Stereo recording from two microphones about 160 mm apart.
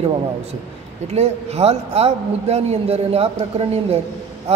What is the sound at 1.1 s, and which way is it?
A man's voice, 40° right (ahead or behind).